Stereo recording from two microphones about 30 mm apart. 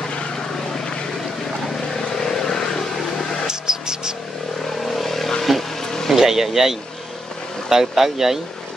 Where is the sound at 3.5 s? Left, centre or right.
Right.